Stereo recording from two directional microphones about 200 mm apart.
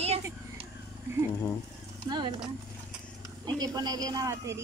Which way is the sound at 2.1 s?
20° right (ahead or behind).